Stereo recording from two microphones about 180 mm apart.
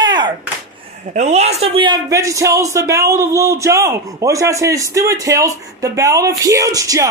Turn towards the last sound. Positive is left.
turn(degrees=-20)  # may be behind; listen again after turning